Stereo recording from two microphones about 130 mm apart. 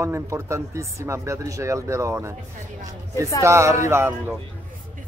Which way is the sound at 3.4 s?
20° right (ahead or behind).